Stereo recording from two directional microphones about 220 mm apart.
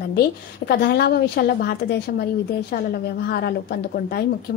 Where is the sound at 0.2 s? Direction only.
45° left (ahead or behind).